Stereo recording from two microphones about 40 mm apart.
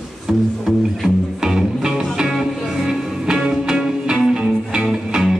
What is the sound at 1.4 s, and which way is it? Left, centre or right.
Music, centre.